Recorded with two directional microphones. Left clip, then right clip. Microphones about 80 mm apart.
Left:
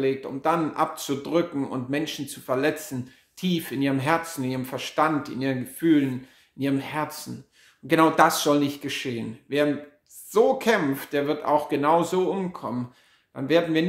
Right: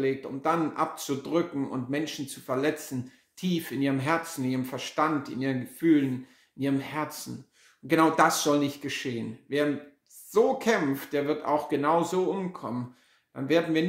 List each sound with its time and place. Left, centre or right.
0.0 s speech: left